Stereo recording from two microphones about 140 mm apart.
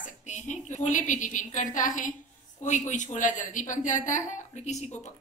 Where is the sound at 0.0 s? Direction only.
60° left (ahead or behind).